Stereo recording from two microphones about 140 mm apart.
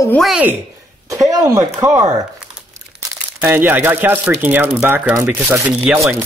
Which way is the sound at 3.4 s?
15° right (ahead or behind).